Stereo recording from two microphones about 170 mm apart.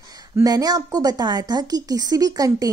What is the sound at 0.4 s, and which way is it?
A woman's voice, 20° right (ahead or behind).